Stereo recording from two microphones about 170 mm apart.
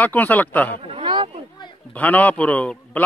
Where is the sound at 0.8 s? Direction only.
30° right (ahead or behind).